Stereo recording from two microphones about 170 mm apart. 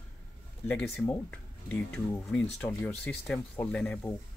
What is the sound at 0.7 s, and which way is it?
Speech, 10° left (ahead or behind).